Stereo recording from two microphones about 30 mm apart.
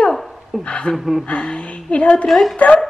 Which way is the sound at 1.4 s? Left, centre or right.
Left.